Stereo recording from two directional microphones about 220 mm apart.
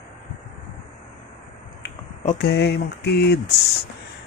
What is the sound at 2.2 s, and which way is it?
Speech, 45° left (ahead or behind).